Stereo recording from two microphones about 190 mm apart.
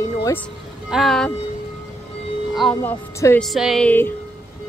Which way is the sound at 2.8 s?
15° left (ahead or behind).